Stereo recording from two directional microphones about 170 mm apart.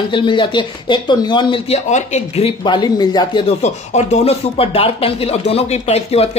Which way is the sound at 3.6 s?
40° left (ahead or behind).